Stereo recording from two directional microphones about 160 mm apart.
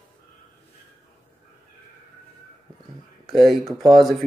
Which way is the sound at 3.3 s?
Centre (ahead or behind).